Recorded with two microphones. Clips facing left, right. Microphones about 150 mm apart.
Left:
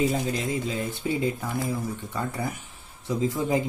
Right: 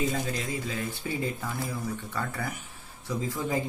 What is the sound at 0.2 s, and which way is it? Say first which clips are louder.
Speech: left 4 dB; 20° left (ahead or behind).